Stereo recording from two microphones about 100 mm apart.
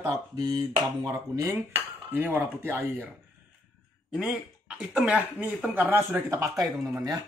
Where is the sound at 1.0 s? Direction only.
35° right (ahead or behind).